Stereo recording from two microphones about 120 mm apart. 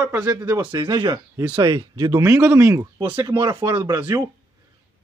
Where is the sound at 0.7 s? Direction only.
35° right (ahead or behind).